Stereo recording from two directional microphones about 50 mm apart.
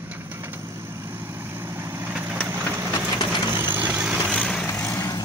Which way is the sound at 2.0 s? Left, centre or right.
Right.